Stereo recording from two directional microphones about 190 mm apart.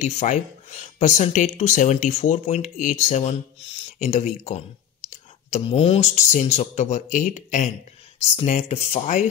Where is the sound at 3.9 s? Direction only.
35° left (ahead or behind).